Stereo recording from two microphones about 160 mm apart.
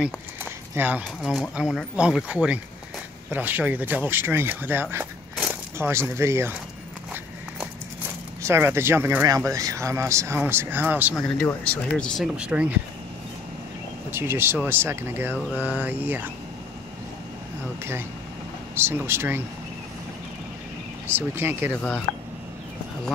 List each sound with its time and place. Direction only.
0.7 s speech: 10° right (ahead or behind)
5.3 s a sound: 10° right (ahead or behind)
8.4 s speech: 15° right (ahead or behind)
11.1 s speech: 5° left (ahead or behind)
12.4 s speech: 5° right (ahead or behind)
14.1 s speech: 15° right (ahead or behind)
18.8 s speech: 15° right (ahead or behind)
21.1 s speech: 15° right (ahead or behind)